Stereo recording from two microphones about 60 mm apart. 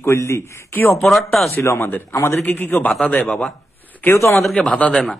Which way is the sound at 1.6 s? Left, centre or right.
Left.